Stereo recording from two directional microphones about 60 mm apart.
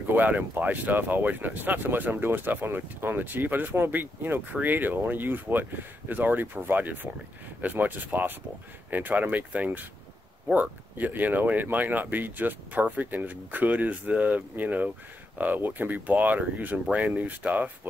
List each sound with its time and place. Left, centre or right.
0.1 s speech: right